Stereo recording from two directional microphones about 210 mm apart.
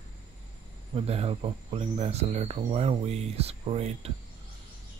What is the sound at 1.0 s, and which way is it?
Speech, 30° right (ahead or behind).